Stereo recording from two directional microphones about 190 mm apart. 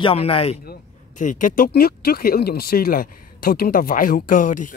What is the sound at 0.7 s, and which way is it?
Speech, 40° left (ahead or behind).